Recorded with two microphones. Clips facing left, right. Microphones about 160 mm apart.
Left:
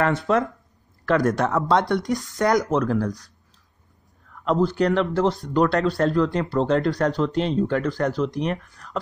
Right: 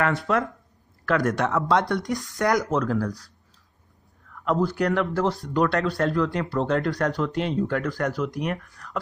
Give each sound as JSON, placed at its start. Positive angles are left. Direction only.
{"t": 0.0, "sound": "speech", "side_deg": 25}
{"t": 4.5, "sound": "speech", "side_deg": 25}